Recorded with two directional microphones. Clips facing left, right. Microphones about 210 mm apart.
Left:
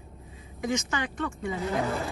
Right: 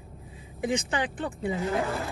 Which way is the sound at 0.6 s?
30° right (ahead or behind).